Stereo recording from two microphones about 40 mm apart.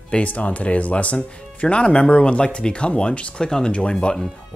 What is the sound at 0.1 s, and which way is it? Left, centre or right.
Speech, left.